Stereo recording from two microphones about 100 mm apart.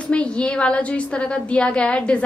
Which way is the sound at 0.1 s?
10° left (ahead or behind).